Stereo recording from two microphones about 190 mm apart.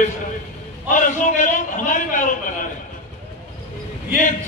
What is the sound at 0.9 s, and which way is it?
A man's voice, 45° left (ahead or behind).